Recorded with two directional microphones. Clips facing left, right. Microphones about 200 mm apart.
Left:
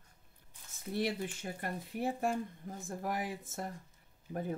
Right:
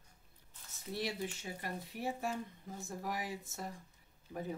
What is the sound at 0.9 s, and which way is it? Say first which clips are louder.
Speech: left 4 dB; 55° left (ahead or behind).